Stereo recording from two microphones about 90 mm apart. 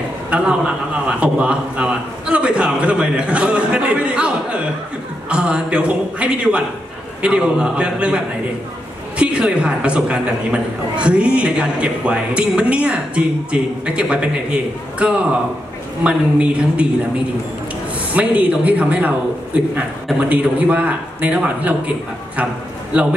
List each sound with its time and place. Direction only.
0.3 s a man's voice: 10° right (ahead or behind)
9.2 s a man's voice: 10° right (ahead or behind)
18.1 s a man's voice: 15° right (ahead or behind)
20.2 s a man's voice: 15° right (ahead or behind)